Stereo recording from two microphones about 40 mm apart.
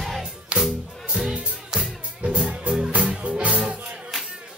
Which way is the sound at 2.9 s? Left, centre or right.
Right.